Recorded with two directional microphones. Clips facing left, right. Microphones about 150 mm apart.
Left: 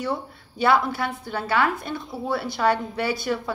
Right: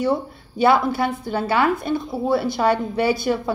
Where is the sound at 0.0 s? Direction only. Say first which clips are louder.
Right 7 dB; 15° right (ahead or behind).